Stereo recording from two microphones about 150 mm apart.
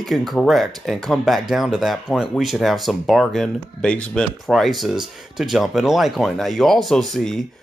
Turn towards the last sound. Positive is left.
turn(degrees=0)  # may be behind; listen again after turning